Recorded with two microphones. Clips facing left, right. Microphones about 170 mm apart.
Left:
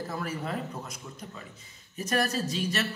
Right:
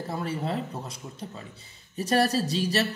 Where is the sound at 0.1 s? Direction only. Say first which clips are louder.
Right 6 dB; 30° right (ahead or behind).